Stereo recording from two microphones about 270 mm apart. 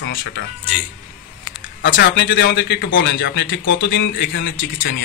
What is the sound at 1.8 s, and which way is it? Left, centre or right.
A man's voice, left.